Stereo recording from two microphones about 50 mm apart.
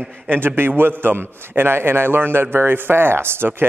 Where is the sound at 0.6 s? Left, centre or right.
Right.